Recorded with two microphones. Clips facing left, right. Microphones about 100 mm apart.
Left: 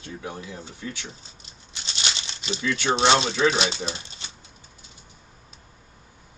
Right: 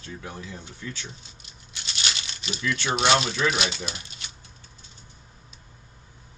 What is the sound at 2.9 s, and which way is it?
Speech, 30° left (ahead or behind).